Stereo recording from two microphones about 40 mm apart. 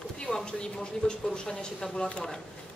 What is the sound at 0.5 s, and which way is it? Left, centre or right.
Speech, centre.